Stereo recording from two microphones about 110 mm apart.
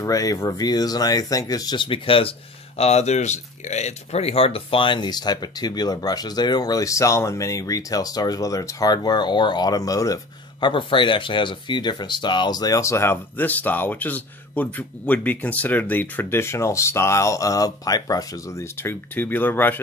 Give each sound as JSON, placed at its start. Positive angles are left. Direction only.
{"t": 0.0, "sound": "speech", "side_deg": 30}
{"t": 1.8, "sound": "speech", "side_deg": 55}
{"t": 2.8, "sound": "speech", "side_deg": 80}
{"t": 10.6, "sound": "speech", "side_deg": 50}
{"t": 18.8, "sound": "speech", "side_deg": 20}